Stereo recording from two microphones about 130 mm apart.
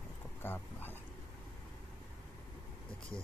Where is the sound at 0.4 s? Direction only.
15° left (ahead or behind).